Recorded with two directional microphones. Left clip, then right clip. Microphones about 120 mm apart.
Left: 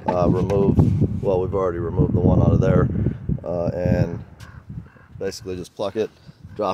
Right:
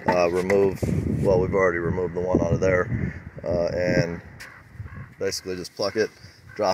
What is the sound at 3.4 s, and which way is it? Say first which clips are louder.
Speech: right 1 dB; 25° left (ahead or behind).